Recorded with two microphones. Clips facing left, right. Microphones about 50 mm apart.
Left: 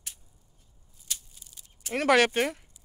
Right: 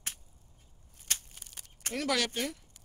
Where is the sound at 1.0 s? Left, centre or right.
Right.